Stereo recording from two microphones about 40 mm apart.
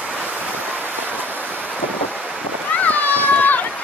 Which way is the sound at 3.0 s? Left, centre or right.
Left.